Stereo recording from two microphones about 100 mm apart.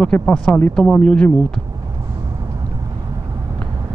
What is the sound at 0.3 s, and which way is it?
Speech, 15° left (ahead or behind).